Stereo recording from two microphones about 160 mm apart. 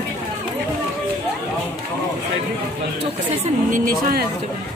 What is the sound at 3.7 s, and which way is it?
Speech, 65° right (ahead or behind).